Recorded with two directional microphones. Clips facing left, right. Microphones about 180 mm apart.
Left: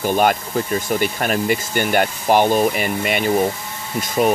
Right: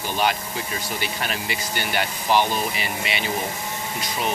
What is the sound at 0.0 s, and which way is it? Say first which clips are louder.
Speech: left 7 dB; 50° left (ahead or behind).